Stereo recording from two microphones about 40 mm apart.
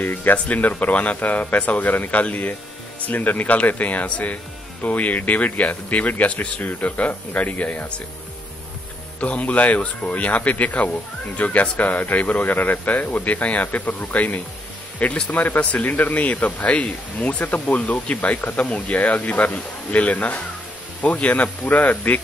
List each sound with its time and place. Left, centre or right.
0.0 s speech: left
9.2 s speech: left